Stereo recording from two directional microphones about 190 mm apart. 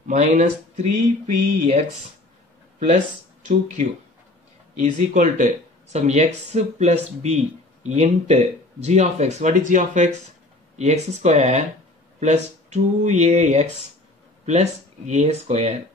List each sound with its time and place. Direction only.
0.1 s speech: 40° right (ahead or behind)
4.8 s speech: 40° right (ahead or behind)